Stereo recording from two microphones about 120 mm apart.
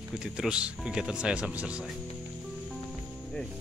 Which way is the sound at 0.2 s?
5° right (ahead or behind).